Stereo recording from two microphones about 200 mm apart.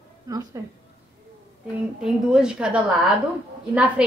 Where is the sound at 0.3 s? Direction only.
20° right (ahead or behind).